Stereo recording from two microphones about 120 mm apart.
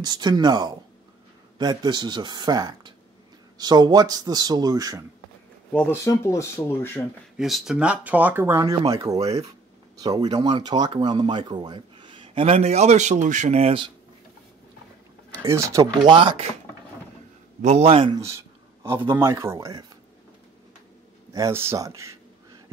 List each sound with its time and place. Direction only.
0.0 s a man's voice: 35° right (ahead or behind)
5.9 s speech: 25° left (ahead or behind)
7.3 s a man's voice: 5° right (ahead or behind); by 9.3 s 30° right (ahead or behind)
10.1 s speech: 50° right (ahead or behind)
10.4 s speech: 35° right (ahead or behind); by 13.7 s 65° right (ahead or behind)
15.3 s speech: 25° right (ahead or behind)
16.1 s speech: 45° right (ahead or behind)
17.6 s speech: 65° right (ahead or behind)
18.1 s speech: 25° right (ahead or behind)
21.3 s speech: 25° right (ahead or behind)